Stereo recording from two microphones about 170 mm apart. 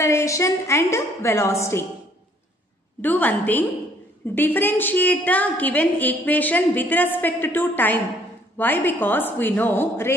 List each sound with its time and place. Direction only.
0.0 s a woman's voice: 15° left (ahead or behind)
3.0 s a woman's voice: 10° left (ahead or behind)